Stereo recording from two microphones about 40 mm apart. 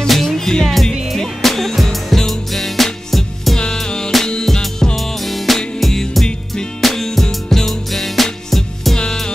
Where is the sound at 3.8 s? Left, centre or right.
Centre.